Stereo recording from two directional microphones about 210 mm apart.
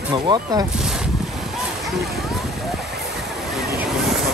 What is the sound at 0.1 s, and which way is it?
Speech, 20° right (ahead or behind).